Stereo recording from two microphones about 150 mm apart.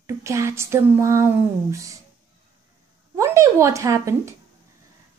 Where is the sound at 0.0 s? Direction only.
20° right (ahead or behind).